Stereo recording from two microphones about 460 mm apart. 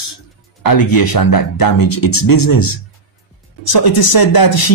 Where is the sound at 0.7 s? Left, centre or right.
Left.